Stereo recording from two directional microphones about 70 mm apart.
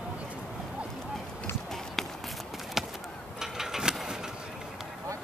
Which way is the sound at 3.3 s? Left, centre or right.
Centre.